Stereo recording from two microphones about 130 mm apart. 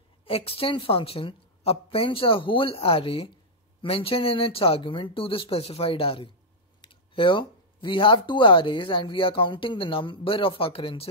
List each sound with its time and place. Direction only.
0.2 s a woman's voice: 45° left (ahead or behind)